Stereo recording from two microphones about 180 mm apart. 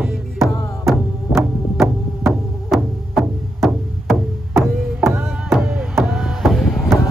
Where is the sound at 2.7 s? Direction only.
Centre (ahead or behind).